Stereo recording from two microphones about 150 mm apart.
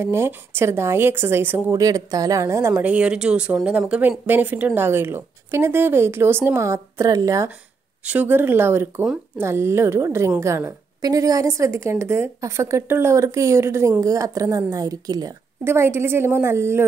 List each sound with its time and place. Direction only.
0.0 s a woman's voice: 15° right (ahead or behind)